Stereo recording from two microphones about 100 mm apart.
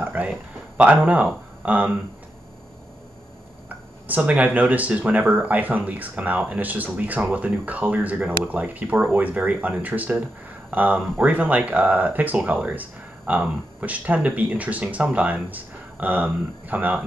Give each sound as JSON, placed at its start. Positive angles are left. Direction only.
{"t": 0.0, "sound": "speech", "side_deg": -15}
{"t": 3.6, "sound": "speech", "side_deg": -15}